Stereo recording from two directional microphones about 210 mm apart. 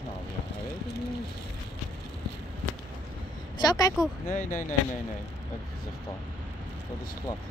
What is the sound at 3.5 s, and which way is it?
Speech, 15° left (ahead or behind).